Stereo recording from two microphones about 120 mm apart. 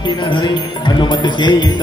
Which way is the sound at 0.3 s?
40° left (ahead or behind).